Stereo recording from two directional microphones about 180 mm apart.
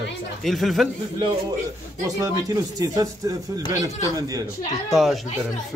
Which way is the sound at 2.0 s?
20° right (ahead or behind).